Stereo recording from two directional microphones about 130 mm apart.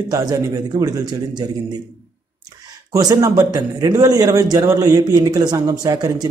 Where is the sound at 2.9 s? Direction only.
25° right (ahead or behind).